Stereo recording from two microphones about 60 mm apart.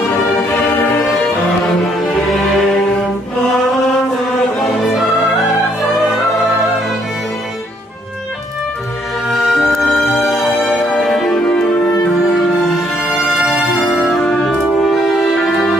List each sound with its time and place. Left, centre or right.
0.7 s music: left
2.0 s music: centre
4.6 s music: centre
9.3 s music: centre
13.3 s music: centre
14.2 s music: centre
14.9 s music: centre